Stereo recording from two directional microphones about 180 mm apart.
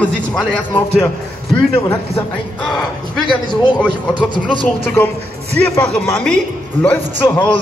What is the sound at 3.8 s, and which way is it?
Speech, 5° left (ahead or behind).